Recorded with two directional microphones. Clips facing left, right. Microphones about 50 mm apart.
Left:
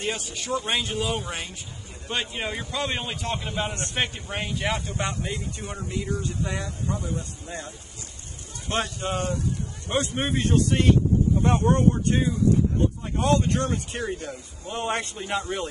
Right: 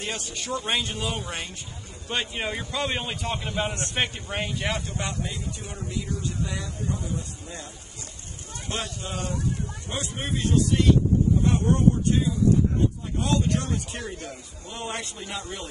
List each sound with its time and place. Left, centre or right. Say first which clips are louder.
0.1 s a man's voice: left 2 dB; centre
4.8 s speech: left 2 dB; left
8.6 s speech: left 5 dB; left